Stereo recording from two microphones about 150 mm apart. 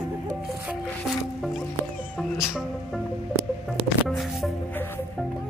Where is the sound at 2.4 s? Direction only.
5° right (ahead or behind).